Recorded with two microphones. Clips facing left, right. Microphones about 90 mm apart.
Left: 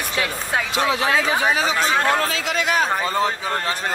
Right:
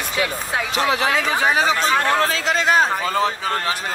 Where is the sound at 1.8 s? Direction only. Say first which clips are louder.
Right 1 dB; 35° right (ahead or behind).